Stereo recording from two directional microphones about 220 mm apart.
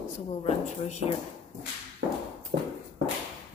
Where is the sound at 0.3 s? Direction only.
30° left (ahead or behind).